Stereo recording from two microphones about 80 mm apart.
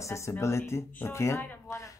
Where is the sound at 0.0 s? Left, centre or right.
Left.